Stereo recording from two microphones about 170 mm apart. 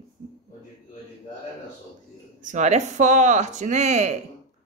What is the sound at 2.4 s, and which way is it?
Speech, 45° right (ahead or behind).